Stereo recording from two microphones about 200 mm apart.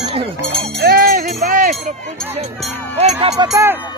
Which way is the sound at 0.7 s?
50° right (ahead or behind).